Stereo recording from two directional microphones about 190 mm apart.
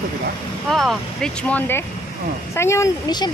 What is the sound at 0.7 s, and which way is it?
Speech, centre (ahead or behind).